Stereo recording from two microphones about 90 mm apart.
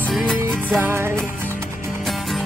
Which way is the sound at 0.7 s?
25° right (ahead or behind).